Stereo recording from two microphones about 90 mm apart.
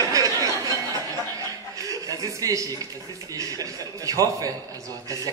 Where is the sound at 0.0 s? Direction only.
40° right (ahead or behind).